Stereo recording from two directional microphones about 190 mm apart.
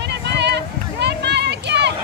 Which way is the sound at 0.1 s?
65° right (ahead or behind).